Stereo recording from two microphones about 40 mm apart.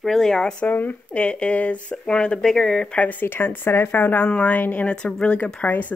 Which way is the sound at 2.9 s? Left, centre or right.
Left.